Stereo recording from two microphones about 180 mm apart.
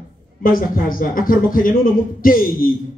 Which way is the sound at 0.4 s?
50° left (ahead or behind).